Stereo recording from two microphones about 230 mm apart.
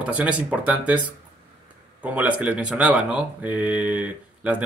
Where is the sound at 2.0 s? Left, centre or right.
Centre.